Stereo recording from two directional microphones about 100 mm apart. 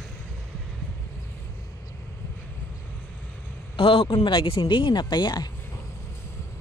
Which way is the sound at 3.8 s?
65° left (ahead or behind).